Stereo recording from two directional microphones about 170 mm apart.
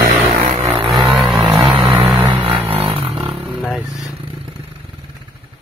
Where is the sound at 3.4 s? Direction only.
Centre (ahead or behind).